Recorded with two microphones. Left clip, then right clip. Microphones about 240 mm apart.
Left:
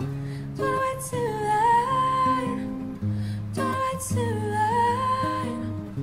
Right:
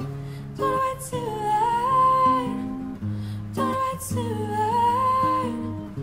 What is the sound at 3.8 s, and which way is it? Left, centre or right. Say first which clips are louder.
Music: even; right.